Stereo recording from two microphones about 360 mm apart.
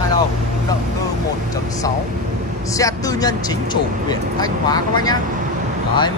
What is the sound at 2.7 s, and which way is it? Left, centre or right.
Speech, centre.